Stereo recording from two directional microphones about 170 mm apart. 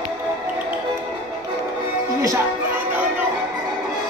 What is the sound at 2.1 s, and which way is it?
Music, 15° right (ahead or behind).